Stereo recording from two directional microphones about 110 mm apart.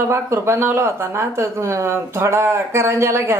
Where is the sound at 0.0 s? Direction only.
25° right (ahead or behind).